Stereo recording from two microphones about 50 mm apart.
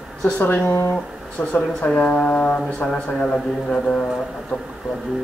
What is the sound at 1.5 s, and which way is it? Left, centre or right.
Speech, left.